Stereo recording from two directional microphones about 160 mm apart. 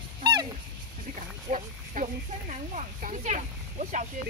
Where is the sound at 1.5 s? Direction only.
45° right (ahead or behind).